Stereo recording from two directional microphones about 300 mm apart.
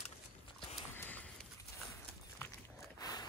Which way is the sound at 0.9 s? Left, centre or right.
Centre.